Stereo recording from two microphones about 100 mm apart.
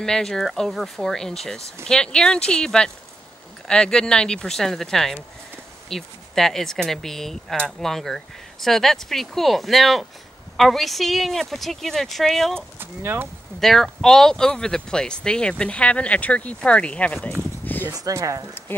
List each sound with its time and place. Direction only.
0.0 s speech: 5° left (ahead or behind)
12.7 s speech: 20° right (ahead or behind)
13.6 s speech: 5° left (ahead or behind)
17.9 s speech: 35° right (ahead or behind)